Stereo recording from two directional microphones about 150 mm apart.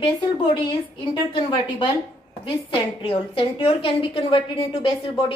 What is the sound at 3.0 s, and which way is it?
A woman's voice, 35° left (ahead or behind).